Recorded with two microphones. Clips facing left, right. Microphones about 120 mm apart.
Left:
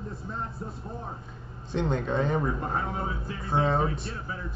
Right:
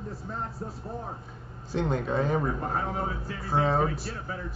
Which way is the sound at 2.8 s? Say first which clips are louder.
Right 1 dB; 40° right (ahead or behind).